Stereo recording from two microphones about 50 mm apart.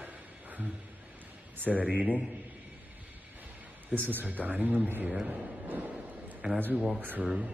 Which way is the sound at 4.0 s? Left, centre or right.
Right.